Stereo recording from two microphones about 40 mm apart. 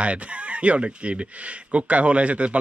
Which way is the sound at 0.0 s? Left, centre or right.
Right.